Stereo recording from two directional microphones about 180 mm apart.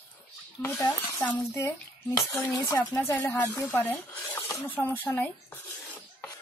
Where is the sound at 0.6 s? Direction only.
15° left (ahead or behind).